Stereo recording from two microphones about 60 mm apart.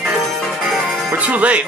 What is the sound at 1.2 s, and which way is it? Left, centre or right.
Speech, right.